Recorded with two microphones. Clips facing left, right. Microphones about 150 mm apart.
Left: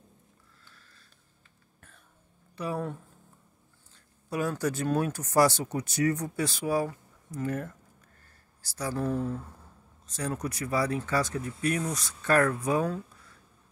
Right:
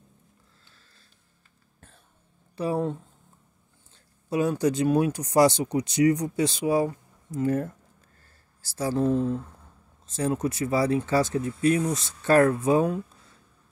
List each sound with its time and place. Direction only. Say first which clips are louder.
2.5 s speech: right 6 dB; 30° right (ahead or behind)